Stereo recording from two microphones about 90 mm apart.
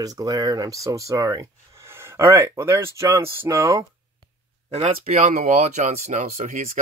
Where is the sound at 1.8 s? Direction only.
30° right (ahead or behind).